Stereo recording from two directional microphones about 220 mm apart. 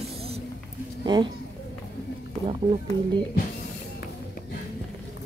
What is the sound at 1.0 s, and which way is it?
Speech, 20° right (ahead or behind).